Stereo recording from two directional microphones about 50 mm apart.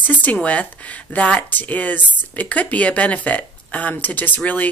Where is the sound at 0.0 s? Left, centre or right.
Left.